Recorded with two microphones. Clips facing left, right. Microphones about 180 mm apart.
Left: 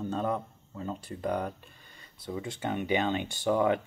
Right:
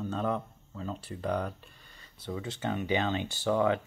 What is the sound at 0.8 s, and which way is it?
Speech, 10° left (ahead or behind).